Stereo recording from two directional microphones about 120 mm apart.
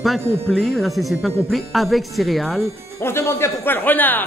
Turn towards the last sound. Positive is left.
turn(degrees=15)  # may be behind; listen again after turning